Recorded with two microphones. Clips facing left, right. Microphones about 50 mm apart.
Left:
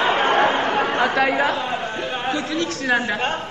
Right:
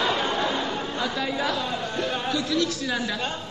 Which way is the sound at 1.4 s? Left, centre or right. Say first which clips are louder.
Left 5 dB; left.